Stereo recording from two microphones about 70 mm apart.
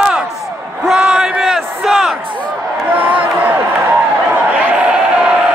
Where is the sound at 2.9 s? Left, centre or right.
Right.